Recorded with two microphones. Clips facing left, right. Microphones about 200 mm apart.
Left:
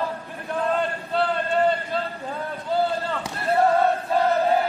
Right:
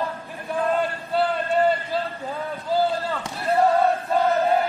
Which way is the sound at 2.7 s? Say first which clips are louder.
Right 1 dB; centre (ahead or behind).